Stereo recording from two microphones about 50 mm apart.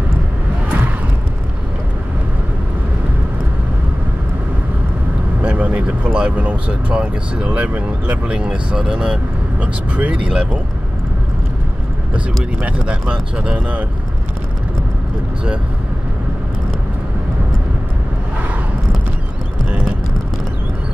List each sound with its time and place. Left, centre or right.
5.4 s vehicle: right
6.1 s speech: right
13.1 s speech: centre